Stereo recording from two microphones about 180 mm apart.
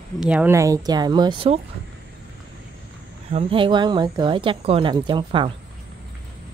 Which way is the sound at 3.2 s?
30° right (ahead or behind).